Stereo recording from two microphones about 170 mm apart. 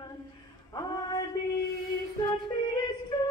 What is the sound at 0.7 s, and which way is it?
Music, 25° left (ahead or behind).